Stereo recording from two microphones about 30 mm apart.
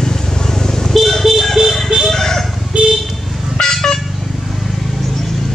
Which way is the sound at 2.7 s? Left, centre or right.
Right.